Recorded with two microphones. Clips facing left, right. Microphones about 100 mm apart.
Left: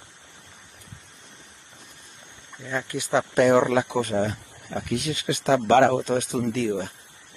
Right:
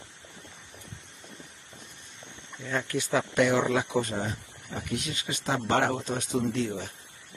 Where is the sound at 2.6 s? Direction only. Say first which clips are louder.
Left 1 dB; 15° left (ahead or behind).